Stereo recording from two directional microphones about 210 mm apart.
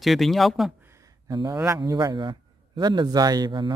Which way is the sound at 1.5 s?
10° right (ahead or behind).